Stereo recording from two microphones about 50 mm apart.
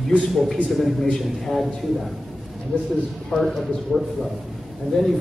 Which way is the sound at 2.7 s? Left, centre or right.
Left.